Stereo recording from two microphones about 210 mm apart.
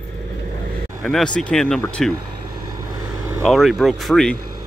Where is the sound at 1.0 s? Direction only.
5° left (ahead or behind).